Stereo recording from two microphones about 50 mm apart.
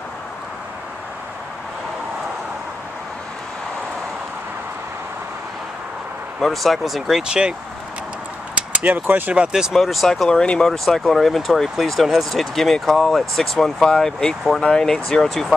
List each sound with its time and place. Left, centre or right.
6.4 s speech: centre
7.2 s speech: centre
8.5 s a sound: right
9.0 s speech: right
9.5 s speech: centre
9.8 s speech: centre